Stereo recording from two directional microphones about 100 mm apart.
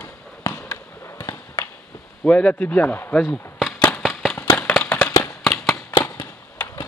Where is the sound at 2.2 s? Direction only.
10° left (ahead or behind).